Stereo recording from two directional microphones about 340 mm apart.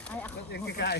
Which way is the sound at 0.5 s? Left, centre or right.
Left.